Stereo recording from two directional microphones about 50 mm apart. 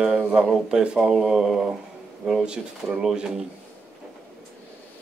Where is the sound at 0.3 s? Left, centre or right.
Centre.